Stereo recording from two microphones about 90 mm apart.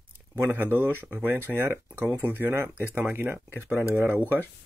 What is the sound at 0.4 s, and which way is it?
Speech, 20° right (ahead or behind).